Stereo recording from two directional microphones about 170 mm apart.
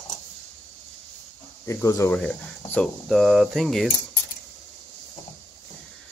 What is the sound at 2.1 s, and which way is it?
Speech, 5° left (ahead or behind).